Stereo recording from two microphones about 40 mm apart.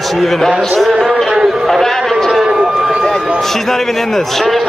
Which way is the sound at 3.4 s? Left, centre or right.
Centre.